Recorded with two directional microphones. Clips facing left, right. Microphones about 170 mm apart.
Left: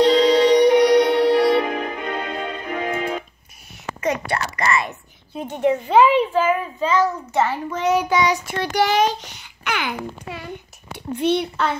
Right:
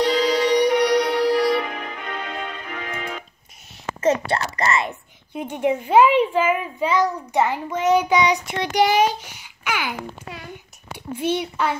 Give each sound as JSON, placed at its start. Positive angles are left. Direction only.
{"t": 0.0, "sound": "music", "side_deg": 25}
{"t": 4.3, "sound": "a child's voice", "side_deg": -25}